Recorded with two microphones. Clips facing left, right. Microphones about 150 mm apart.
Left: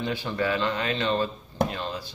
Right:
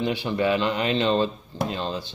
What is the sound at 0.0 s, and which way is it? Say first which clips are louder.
Speech: right 4 dB; 15° right (ahead or behind).